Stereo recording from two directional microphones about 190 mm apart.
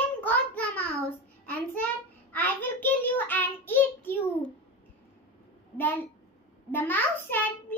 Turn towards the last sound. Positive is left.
turn(degrees=10)  # may be behind; listen again after turning